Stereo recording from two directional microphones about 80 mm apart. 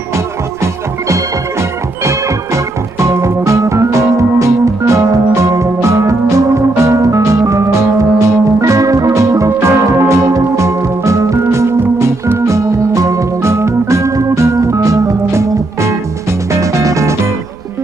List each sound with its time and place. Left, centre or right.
2.0 s music: right
12.0 s organ: right